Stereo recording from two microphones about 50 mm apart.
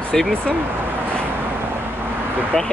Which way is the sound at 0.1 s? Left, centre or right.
Centre.